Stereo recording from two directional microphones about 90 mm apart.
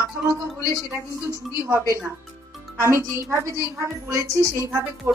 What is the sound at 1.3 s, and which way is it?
A woman's voice, 35° right (ahead or behind).